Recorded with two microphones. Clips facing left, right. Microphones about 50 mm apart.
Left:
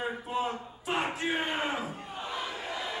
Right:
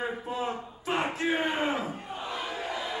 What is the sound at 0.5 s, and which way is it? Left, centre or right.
Speech, centre.